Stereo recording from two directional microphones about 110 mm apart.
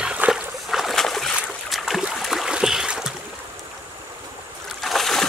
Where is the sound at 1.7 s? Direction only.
Centre (ahead or behind).